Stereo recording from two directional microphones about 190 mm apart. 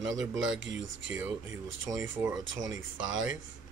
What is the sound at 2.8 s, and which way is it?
Speech, 90° right.